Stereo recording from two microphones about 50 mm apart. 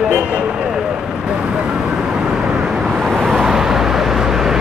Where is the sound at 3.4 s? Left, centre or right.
Centre.